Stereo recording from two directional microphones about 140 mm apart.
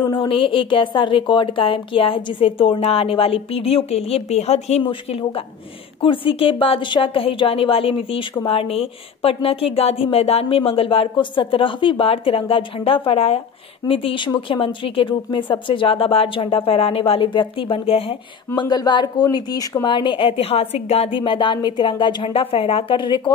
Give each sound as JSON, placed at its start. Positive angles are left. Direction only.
{"t": 0.0, "sound": "speech", "side_deg": 30}